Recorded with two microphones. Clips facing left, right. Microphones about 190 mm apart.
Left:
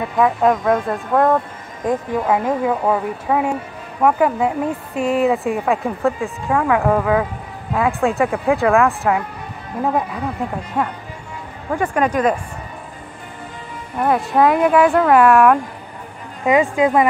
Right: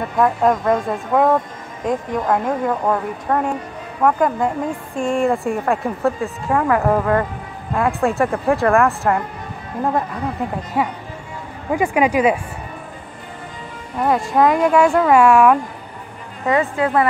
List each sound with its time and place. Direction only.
0.0 s speech: centre (ahead or behind)
10.8 s speech: 5° right (ahead or behind)
13.9 s speech: centre (ahead or behind)
16.4 s a woman's voice: 15° left (ahead or behind)